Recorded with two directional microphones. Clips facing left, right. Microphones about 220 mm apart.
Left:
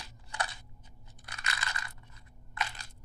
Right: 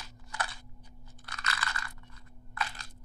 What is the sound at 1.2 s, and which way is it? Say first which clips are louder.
Crunch: right 2 dB; 20° left (ahead or behind).